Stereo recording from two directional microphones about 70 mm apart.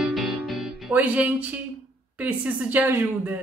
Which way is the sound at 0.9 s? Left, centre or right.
Right.